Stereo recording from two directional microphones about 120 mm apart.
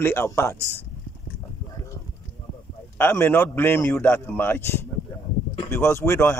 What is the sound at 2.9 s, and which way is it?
A man's voice, 20° left (ahead or behind).